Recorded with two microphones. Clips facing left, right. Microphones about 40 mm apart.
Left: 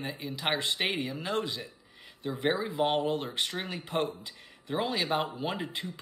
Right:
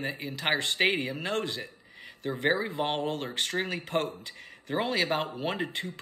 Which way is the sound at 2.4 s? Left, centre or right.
Right.